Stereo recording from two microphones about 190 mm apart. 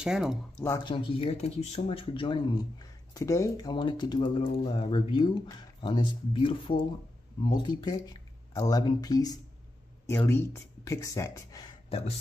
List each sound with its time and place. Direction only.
0.0 s speech: 5° right (ahead or behind)
0.8 s speech: 25° left (ahead or behind)
11.9 s speech: 30° left (ahead or behind)